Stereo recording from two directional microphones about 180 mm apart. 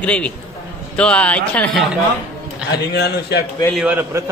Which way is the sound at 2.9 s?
65° left (ahead or behind).